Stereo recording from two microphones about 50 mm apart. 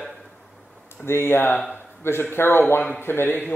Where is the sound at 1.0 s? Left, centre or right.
Left.